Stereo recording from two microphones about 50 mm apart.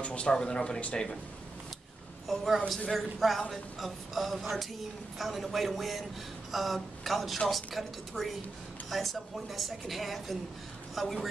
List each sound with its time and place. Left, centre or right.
0.0 s speech: left
2.2 s a woman's voice: centre